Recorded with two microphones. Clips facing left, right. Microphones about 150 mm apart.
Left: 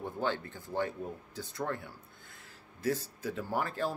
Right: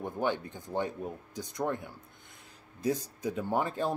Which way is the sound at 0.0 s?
15° right (ahead or behind).